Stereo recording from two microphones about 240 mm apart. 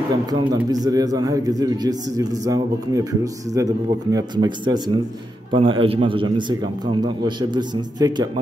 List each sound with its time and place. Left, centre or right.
0.3 s a man's voice: centre